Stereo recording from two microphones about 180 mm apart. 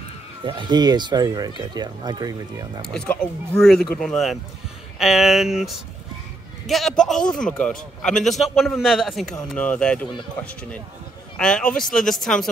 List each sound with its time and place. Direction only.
0.5 s speech: 25° right (ahead or behind)
2.9 s a man's voice: 5° left (ahead or behind)
6.7 s a man's voice: centre (ahead or behind)